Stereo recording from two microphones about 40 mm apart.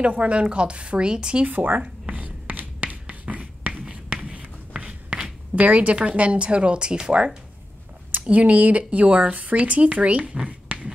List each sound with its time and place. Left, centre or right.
0.0 s a woman's voice: right
1.4 s a sound: right
2.8 s writing: right
4.2 s a sound: right
5.6 s a woman's voice: right
8.3 s speech: right